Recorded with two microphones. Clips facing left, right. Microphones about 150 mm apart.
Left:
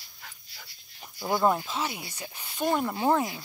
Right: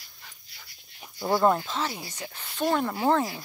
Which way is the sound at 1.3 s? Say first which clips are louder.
Right 2 dB; 10° left (ahead or behind).